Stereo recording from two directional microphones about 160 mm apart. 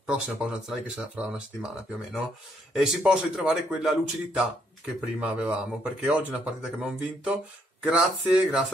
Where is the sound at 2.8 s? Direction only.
5° right (ahead or behind).